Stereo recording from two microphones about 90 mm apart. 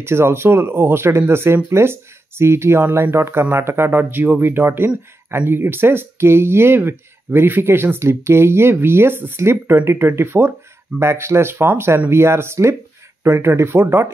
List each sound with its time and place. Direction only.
0.0 s speech: 25° right (ahead or behind)